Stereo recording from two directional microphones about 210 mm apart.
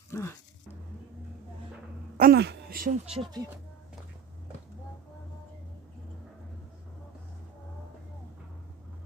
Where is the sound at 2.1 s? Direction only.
50° right (ahead or behind).